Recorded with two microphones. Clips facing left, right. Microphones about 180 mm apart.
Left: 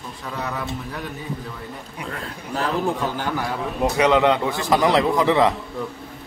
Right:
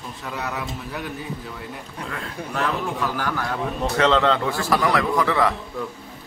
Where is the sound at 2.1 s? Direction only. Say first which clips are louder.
Even; 35° left (ahead or behind).